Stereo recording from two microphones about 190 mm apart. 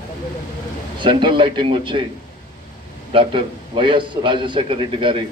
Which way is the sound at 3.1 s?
25° right (ahead or behind).